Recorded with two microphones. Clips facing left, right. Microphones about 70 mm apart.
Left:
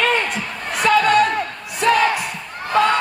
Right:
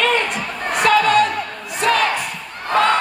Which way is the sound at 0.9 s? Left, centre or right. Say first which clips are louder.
Even; centre.